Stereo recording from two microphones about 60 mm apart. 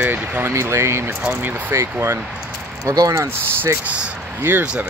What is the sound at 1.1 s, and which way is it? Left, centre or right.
Speech, right.